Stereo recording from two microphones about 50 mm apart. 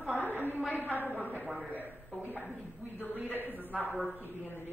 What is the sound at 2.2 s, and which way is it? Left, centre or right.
A man's voice, left.